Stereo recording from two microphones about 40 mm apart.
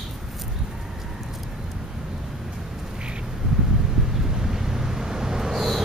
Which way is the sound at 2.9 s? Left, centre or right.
Right.